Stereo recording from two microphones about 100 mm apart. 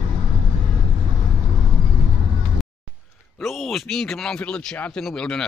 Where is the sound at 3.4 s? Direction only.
Centre (ahead or behind).